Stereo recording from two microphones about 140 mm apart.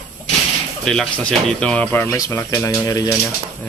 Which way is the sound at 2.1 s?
20° left (ahead or behind).